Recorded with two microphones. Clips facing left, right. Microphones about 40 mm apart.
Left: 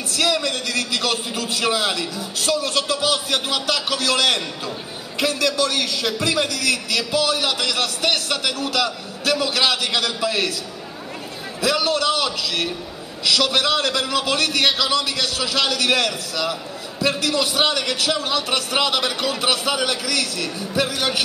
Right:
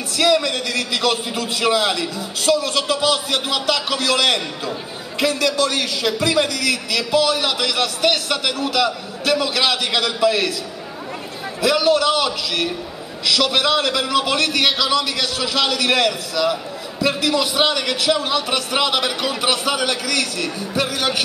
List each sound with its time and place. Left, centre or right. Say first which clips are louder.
0.2 s a man's voice: right 4 dB; centre
11.6 s a man's voice: right 4 dB; centre